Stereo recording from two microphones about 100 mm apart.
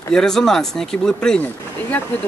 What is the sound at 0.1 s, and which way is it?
Speech, 5° left (ahead or behind).